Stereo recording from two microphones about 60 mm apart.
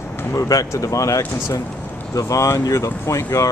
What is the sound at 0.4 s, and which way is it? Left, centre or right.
Speech, left.